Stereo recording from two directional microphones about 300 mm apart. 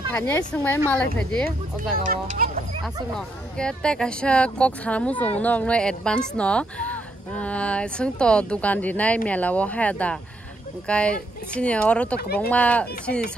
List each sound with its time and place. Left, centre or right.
0.1 s speech: centre
2.0 s a sound: right
2.8 s speech: centre